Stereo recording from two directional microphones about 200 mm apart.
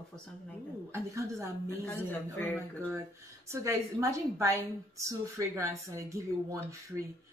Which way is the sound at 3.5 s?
15° right (ahead or behind).